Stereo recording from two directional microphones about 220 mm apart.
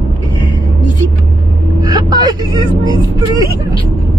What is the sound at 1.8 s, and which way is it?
Speech, 15° right (ahead or behind).